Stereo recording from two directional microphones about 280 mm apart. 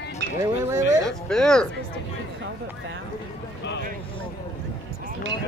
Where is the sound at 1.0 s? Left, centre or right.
Centre.